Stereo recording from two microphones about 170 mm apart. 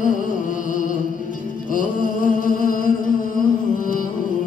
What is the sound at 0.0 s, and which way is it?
Music, 50° left (ahead or behind).